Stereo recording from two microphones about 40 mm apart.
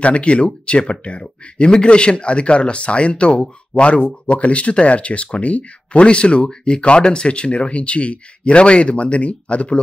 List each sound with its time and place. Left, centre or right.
0.0 s speech: left